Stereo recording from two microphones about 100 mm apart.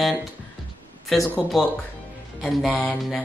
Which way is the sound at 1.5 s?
Centre (ahead or behind).